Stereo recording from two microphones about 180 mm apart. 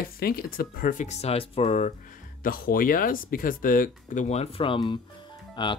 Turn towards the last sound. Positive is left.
turn(degrees=25)  # may be behind; listen again after turning